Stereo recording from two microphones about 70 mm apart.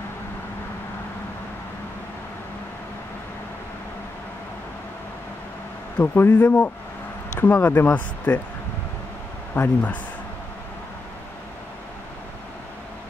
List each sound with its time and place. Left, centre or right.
5.9 s speech: left
9.5 s speech: left